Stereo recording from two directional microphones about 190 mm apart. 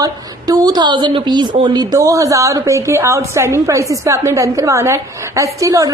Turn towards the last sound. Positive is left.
turn(degrees=-15)  # may be behind; listen again after turning